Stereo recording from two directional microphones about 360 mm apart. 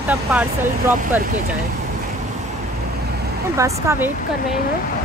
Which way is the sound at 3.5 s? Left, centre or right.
Centre.